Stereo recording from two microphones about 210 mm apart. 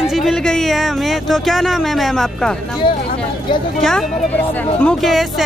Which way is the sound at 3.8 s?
Centre (ahead or behind).